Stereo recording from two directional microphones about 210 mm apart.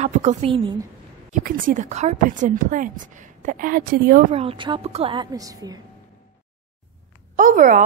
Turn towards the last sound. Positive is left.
turn(degrees=-40)  # may be behind; listen again after turning